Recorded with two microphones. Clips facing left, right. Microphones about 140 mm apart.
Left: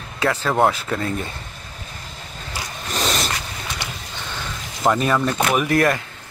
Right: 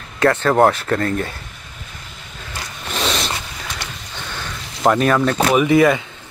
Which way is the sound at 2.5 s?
Centre (ahead or behind).